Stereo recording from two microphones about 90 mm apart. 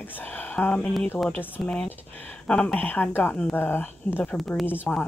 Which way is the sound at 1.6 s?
10° left (ahead or behind).